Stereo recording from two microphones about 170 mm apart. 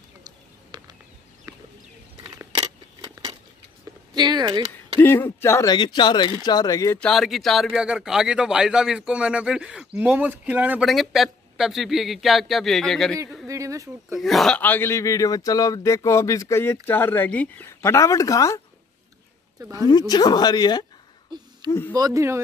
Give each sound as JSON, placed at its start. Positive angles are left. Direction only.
{"t": 0.7, "sound": "a sound", "side_deg": -25}
{"t": 2.2, "sound": "scissors", "side_deg": -25}
{"t": 4.1, "sound": "speech", "side_deg": -25}
{"t": 5.0, "sound": "speech", "side_deg": 15}
{"t": 7.0, "sound": "a man's voice", "side_deg": 0}
{"t": 13.5, "sound": "a sound", "side_deg": -20}
{"t": 14.1, "sound": "a man's voice", "side_deg": 0}
{"t": 19.6, "sound": "speech", "side_deg": -20}
{"t": 19.9, "sound": "speech", "side_deg": 25}
{"t": 21.3, "sound": "a sound", "side_deg": -25}
{"t": 21.6, "sound": "a man's voice", "side_deg": 15}
{"t": 21.9, "sound": "speech", "side_deg": -20}